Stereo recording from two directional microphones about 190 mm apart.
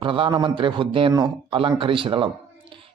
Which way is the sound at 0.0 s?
25° right (ahead or behind).